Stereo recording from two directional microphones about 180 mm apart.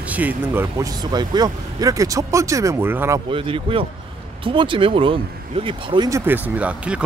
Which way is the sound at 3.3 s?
30° right (ahead or behind).